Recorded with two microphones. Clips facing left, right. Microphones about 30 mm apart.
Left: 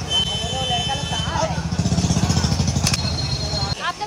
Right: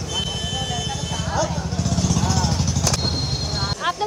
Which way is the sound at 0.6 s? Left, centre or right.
Left.